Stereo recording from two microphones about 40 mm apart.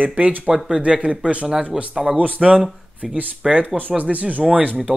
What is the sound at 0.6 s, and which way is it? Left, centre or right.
Speech, right.